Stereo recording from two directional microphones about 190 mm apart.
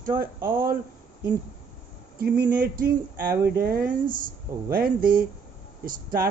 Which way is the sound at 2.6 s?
50° right (ahead or behind).